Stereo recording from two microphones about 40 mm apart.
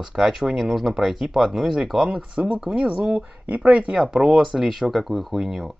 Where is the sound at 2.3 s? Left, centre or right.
Right.